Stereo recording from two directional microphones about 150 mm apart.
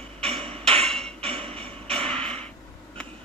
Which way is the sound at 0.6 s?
40° right (ahead or behind).